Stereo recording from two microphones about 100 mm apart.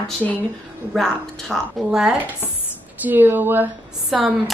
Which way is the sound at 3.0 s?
20° right (ahead or behind).